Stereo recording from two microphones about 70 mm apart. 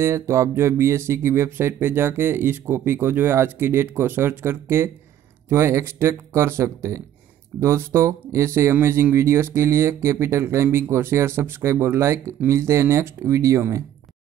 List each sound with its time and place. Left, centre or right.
0.0 s speech: right